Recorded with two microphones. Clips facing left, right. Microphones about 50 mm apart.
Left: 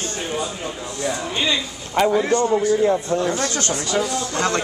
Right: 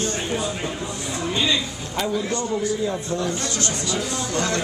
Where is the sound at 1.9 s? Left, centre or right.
Left.